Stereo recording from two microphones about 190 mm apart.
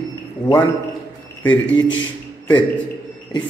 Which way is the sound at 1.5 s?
80° left.